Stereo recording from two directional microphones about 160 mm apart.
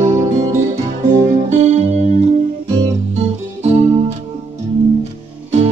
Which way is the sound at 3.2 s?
40° right (ahead or behind).